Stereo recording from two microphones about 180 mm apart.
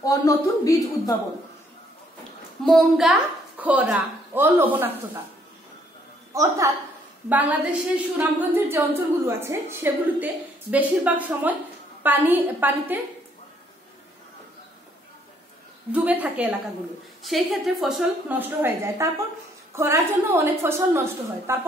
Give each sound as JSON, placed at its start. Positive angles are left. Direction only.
{"t": 0.0, "sound": "a man's voice", "side_deg": 20}
{"t": 2.6, "sound": "a woman's voice", "side_deg": 0}
{"t": 6.3, "sound": "a woman's voice", "side_deg": -15}
{"t": 15.9, "sound": "a woman's voice", "side_deg": -10}